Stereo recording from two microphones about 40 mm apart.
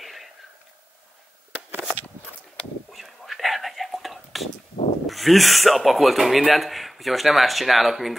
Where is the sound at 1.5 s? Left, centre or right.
Right.